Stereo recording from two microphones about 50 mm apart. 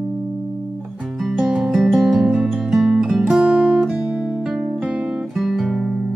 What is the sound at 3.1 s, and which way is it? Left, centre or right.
Music, centre.